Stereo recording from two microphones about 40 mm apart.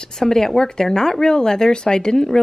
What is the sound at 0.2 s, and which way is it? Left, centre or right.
Speech, centre.